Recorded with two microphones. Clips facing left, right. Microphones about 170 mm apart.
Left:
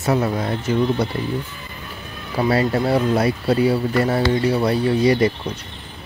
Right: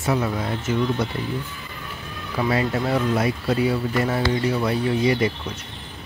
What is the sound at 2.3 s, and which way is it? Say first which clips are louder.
Speech: left 4 dB; 35° left (ahead or behind).